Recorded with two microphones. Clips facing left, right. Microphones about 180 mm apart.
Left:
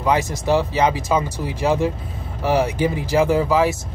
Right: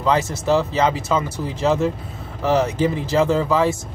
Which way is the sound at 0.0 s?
15° left (ahead or behind).